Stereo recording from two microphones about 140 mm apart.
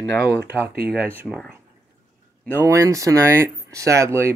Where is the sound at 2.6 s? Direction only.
20° right (ahead or behind).